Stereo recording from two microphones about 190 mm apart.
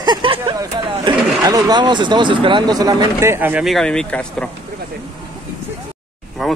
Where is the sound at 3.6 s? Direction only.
Centre (ahead or behind).